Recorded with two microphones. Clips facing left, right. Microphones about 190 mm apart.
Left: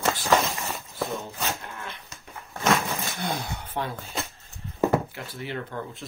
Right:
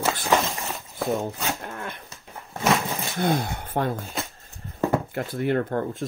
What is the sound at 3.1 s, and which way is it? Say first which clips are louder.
Speech: right 7 dB; 50° right (ahead or behind).